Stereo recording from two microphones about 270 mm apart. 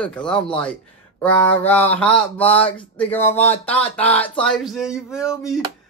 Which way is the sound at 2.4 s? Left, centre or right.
Left.